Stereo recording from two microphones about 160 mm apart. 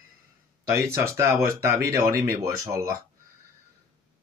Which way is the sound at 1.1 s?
15° right (ahead or behind).